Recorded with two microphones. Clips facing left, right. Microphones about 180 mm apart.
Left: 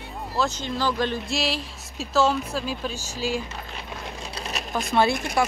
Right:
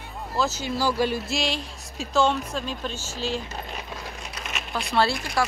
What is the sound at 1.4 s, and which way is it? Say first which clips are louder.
Speech: left 1 dB; centre (ahead or behind).